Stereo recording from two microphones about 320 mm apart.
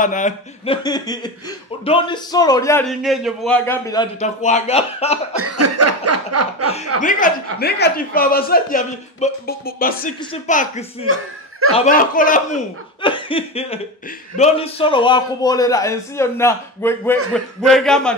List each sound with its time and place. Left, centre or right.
0.0 s speech: left
0.8 s a man's voice: centre
5.3 s a sound: right
7.0 s a man's voice: left; by 18.1 s centre